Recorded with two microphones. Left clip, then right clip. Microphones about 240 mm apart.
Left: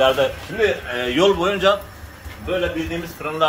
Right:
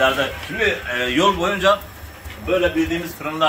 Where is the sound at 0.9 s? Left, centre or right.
Centre.